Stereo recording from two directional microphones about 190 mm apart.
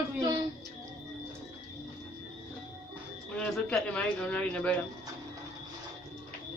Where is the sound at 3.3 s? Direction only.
5° left (ahead or behind).